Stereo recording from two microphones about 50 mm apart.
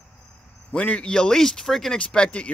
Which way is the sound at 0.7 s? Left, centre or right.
Left.